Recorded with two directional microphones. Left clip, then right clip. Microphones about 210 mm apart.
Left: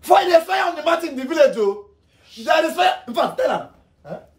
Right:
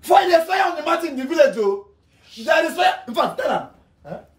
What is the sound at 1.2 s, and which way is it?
Speech, 15° left (ahead or behind).